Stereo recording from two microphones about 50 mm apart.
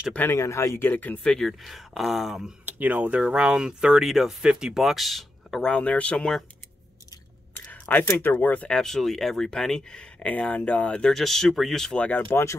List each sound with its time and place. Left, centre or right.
0.3 s speech: left
0.7 s speech: left
1.2 s speech: centre
1.6 s speech: centre
2.6 s speech: right
3.2 s speech: centre
4.1 s speech: centre
4.8 s speech: centre
5.6 s speech: left
7.9 s speech: left
8.6 s speech: centre
10.1 s speech: left
11.1 s speech: centre
12.3 s speech: left